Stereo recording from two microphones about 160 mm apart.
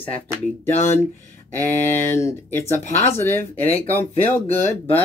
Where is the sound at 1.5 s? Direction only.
15° left (ahead or behind).